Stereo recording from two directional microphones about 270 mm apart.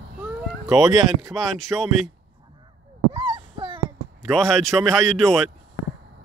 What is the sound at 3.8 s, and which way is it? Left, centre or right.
A man's voice, centre.